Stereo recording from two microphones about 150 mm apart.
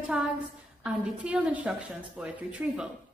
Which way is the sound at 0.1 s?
5° right (ahead or behind).